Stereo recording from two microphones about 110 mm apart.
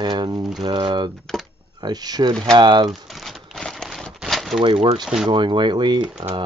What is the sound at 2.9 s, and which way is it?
Crumpling, centre (ahead or behind).